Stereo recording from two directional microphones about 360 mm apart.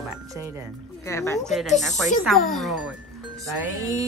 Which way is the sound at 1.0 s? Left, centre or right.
Centre.